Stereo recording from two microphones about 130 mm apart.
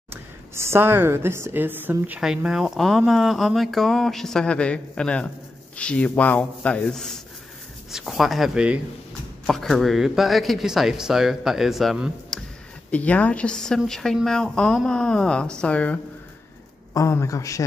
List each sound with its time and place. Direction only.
0.1 s a woman's voice: 20° right (ahead or behind); by 16.0 s 10° left (ahead or behind)
16.9 s a man's voice: 20° left (ahead or behind)